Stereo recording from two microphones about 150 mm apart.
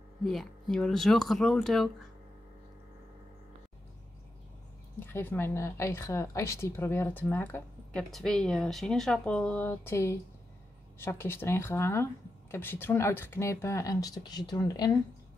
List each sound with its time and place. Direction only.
0.2 s speech: centre (ahead or behind)
5.0 s speech: 15° left (ahead or behind)
8.1 s speech: 5° left (ahead or behind); by 14.9 s 25° left (ahead or behind)